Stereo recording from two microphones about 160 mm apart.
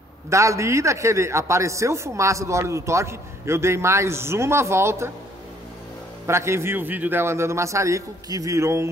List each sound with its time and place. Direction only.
0.3 s a man's voice: 20° right (ahead or behind)
6.2 s a man's voice: 15° right (ahead or behind)